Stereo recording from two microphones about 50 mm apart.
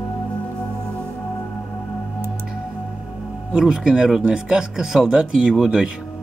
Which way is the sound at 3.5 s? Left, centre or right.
Centre.